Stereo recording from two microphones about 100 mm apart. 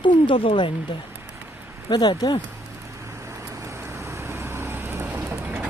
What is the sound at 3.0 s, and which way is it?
Vehicle, 30° right (ahead or behind).